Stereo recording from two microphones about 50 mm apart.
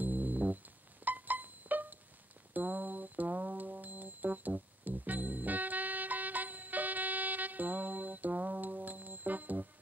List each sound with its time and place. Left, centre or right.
0.0 s music: right